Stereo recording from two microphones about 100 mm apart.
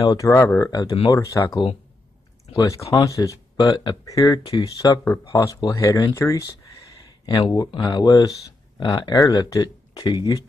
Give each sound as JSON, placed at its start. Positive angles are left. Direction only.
{"t": 0.0, "sound": "speech", "side_deg": 35}
{"t": 3.7, "sound": "speech", "side_deg": 50}
{"t": 4.0, "sound": "speech", "side_deg": 35}
{"t": 7.1, "sound": "a sound", "side_deg": 40}
{"t": 7.5, "sound": "speech", "side_deg": 40}